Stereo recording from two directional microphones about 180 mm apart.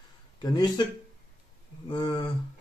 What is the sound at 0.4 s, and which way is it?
Speech, 25° left (ahead or behind).